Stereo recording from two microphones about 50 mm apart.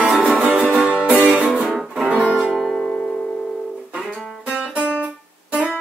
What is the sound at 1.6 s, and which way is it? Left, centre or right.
Music, centre.